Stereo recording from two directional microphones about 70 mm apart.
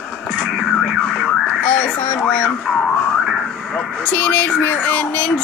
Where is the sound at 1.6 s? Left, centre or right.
Left.